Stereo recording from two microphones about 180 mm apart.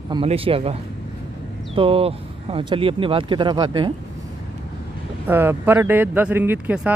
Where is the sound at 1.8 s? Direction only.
30° right (ahead or behind).